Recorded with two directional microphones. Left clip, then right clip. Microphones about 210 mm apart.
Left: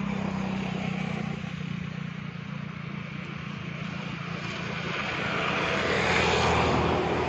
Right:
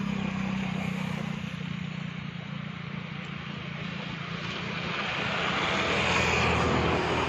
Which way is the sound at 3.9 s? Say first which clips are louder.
Even; 45° left (ahead or behind).